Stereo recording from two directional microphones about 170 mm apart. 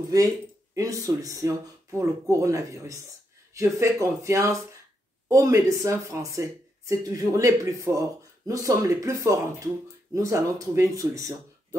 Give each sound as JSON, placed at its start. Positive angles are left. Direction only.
{"t": 0.7, "sound": "speech", "side_deg": -20}